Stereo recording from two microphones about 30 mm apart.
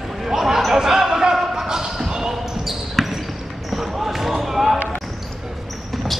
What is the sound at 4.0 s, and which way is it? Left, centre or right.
Basketball bounce, centre.